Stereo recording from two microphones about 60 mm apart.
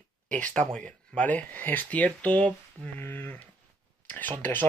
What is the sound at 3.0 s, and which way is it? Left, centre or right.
Speech, left.